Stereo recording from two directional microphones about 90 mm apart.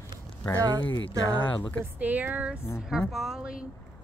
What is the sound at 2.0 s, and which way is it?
Speech, 20° right (ahead or behind).